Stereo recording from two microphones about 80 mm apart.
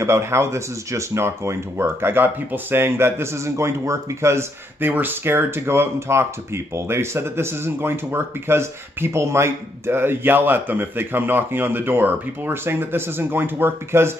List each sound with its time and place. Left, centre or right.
0.0 s speech: right